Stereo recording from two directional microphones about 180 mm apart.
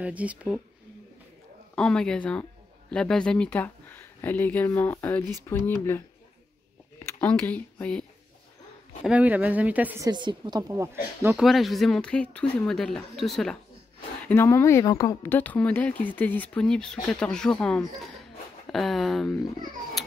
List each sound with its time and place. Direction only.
0.0 s speech: 10° right (ahead or behind)
1.8 s speech: 5° left (ahead or behind)
9.0 s speech: 5° right (ahead or behind)
10.0 s a woman's voice: 25° right (ahead or behind)
11.3 s speech: centre (ahead or behind)
14.2 s speech: 10° left (ahead or behind)
15.2 s speech: 10° left (ahead or behind)